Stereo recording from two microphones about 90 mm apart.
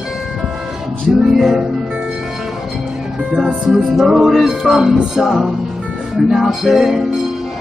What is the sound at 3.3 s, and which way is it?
Music, 5° right (ahead or behind).